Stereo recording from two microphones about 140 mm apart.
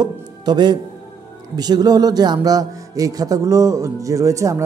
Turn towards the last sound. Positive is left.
turn(degrees=-20)  # may be behind; listen again after turning